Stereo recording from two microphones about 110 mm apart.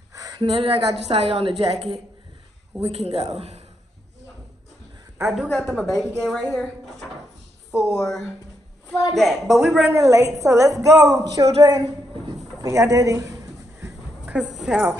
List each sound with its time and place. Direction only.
0.1 s a sound: 30° right (ahead or behind)
0.4 s a woman's voice: 60° right (ahead or behind)
2.8 s speech: 70° right (ahead or behind)
5.6 s a woman's voice: centre (ahead or behind)
7.7 s speech: centre (ahead or behind)
9.1 s a woman's voice: centre (ahead or behind)
9.9 s a woman's voice: 30° right (ahead or behind)
12.6 s a sound: 30° right (ahead or behind)
14.2 s a woman's voice: 10° right (ahead or behind)